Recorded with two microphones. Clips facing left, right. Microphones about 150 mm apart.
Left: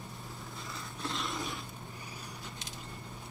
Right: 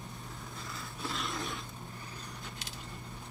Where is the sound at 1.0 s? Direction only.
Centre (ahead or behind).